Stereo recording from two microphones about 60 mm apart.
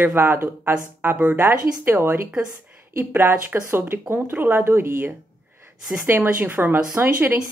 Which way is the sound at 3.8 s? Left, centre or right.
Right.